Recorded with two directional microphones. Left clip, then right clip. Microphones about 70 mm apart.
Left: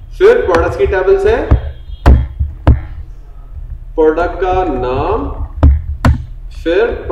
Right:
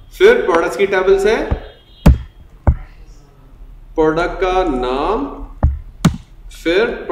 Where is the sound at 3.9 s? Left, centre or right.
Centre.